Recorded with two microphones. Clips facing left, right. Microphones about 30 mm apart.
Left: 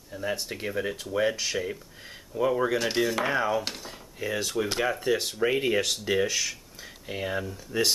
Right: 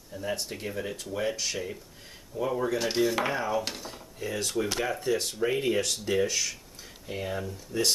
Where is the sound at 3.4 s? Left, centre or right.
Centre.